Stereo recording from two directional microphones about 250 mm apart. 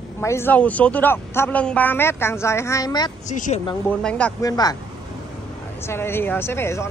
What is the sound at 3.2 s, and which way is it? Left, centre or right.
Speech, left.